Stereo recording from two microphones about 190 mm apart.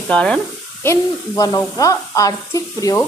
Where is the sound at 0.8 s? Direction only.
15° left (ahead or behind).